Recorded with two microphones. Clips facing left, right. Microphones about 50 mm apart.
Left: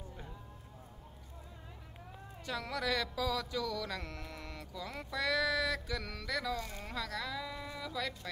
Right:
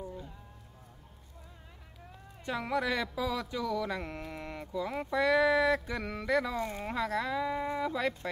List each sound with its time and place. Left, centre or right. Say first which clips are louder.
2.4 s speech: right 5 dB; right